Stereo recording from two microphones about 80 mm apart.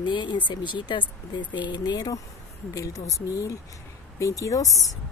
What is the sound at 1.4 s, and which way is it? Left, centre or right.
Speech, left.